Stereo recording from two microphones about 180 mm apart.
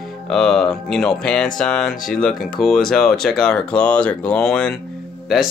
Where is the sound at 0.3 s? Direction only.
5° left (ahead or behind).